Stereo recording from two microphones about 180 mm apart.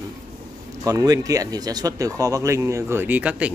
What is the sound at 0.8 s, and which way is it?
Speech, 20° right (ahead or behind).